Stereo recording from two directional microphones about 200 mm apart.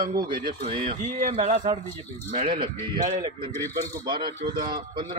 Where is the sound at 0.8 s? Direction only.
40° right (ahead or behind).